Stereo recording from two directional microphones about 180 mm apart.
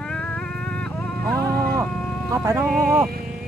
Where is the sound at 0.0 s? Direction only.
5° left (ahead or behind).